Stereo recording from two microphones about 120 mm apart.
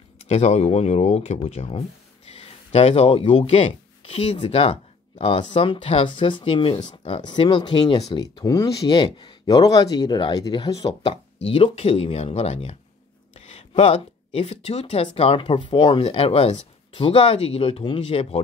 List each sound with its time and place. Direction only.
0.2 s speech: 65° left (ahead or behind); by 8.8 s 30° left (ahead or behind)
8.8 s speech: 40° left (ahead or behind)
11.1 s speech: 50° left (ahead or behind)